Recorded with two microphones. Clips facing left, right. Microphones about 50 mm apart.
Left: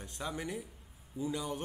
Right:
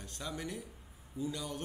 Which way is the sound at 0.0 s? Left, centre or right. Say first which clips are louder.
Left 2 dB; centre.